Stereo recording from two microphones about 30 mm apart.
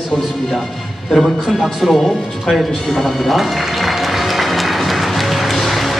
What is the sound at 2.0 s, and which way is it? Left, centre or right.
Speech, centre.